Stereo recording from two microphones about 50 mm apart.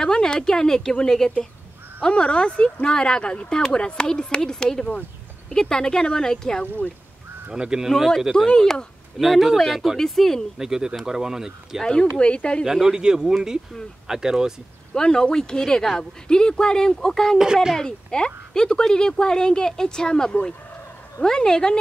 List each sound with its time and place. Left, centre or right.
0.0 s speech: centre
7.5 s speech: centre
8.2 s speech: centre
8.5 s speech: centre
9.2 s speech: centre
10.6 s speech: centre
11.8 s speech: centre
12.6 s speech: centre
15.0 s speech: centre